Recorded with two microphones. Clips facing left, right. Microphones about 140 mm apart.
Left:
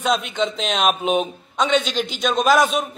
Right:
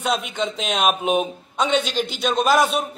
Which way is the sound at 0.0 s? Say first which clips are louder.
Left 2 dB; 10° right (ahead or behind).